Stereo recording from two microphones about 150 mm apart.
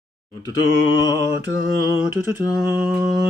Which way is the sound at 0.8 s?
25° left (ahead or behind).